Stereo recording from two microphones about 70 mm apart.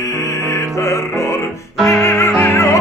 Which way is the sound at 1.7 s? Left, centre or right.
Centre.